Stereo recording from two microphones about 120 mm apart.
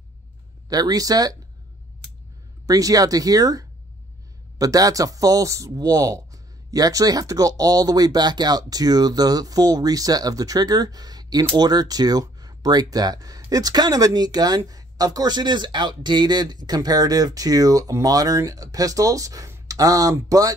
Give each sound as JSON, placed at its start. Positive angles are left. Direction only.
{"t": 0.7, "sound": "speech", "side_deg": -30}
{"t": 2.6, "sound": "speech", "side_deg": -30}